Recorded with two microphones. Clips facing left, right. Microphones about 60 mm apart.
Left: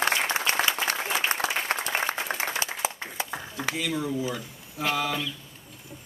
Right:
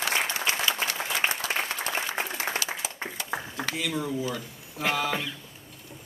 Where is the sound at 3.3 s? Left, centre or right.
Centre.